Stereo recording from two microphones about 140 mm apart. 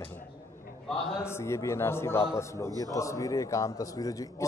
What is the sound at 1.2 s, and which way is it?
A man's voice, 20° left (ahead or behind).